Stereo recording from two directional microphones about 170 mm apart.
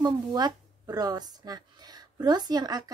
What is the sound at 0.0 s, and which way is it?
A woman's voice, 25° right (ahead or behind).